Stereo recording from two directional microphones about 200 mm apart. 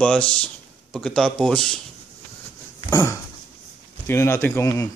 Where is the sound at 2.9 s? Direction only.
10° left (ahead or behind).